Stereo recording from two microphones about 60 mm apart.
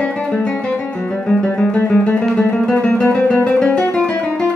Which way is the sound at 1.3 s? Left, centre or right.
Centre.